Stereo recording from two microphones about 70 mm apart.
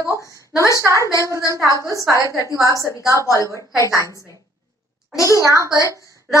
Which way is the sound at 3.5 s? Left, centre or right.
Right.